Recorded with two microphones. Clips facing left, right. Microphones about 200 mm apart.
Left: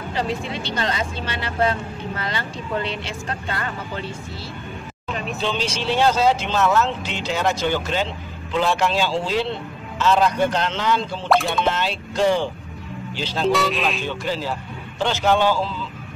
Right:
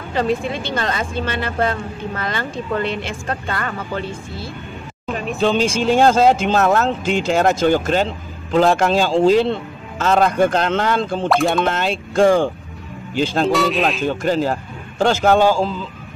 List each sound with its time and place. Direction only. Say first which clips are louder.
0.1 s speech: right 7 dB; 50° right (ahead or behind)
5.1 s speech: right 7 dB; 45° right (ahead or behind)
13.5 s speech: right 3 dB; centre (ahead or behind)
14.0 s speech: right 7 dB; 50° right (ahead or behind)